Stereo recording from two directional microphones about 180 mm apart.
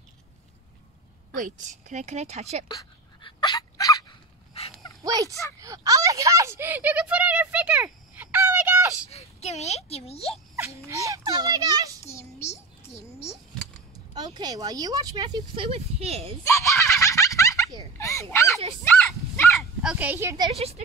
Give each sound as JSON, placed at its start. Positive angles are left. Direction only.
{"t": 1.3, "sound": "speech", "side_deg": -45}
{"t": 2.7, "sound": "a sound", "side_deg": 25}
{"t": 4.6, "sound": "dog", "side_deg": 35}
{"t": 5.0, "sound": "a sound", "side_deg": -20}
{"t": 9.1, "sound": "a child's voice", "side_deg": 35}
{"t": 10.9, "sound": "a child's voice", "side_deg": -15}
{"t": 12.0, "sound": "a sound", "side_deg": 15}
{"t": 14.1, "sound": "speech", "side_deg": -20}
{"t": 16.7, "sound": "fowl", "side_deg": 15}
{"t": 17.9, "sound": "a sound", "side_deg": 15}
{"t": 18.9, "sound": "dog", "side_deg": 10}
{"t": 19.8, "sound": "speech", "side_deg": -5}
{"t": 20.5, "sound": "speech", "side_deg": -35}